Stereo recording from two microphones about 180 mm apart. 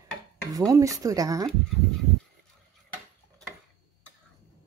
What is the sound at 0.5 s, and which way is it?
Speech, 20° right (ahead or behind).